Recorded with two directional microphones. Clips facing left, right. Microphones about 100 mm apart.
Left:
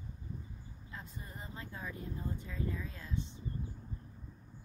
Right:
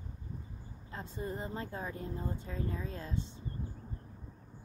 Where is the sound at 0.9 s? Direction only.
30° right (ahead or behind).